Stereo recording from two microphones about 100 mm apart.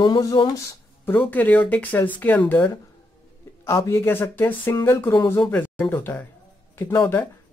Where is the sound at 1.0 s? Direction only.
20° left (ahead or behind).